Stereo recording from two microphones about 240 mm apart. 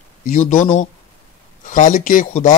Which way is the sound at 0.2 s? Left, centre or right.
Left.